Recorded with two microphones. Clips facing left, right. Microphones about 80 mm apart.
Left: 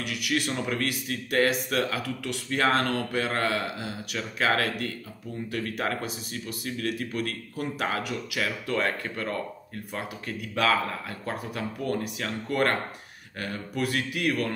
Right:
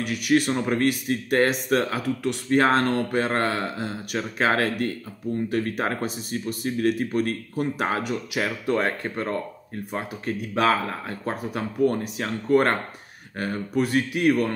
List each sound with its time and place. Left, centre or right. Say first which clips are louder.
0.0 s speech: right 7 dB; right